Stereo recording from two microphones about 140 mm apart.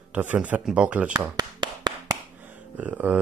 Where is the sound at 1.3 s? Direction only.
30° right (ahead or behind).